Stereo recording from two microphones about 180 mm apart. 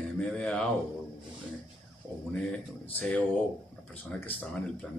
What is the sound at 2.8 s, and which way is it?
Speech, 5° left (ahead or behind).